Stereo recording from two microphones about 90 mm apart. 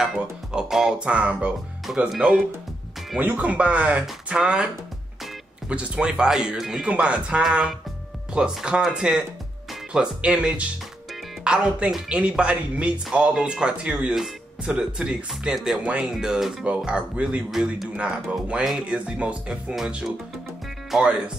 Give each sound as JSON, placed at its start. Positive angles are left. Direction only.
{"t": 0.0, "sound": "speech", "side_deg": -5}
{"t": 5.7, "sound": "speech", "side_deg": -10}
{"t": 17.5, "sound": "a man's voice", "side_deg": 0}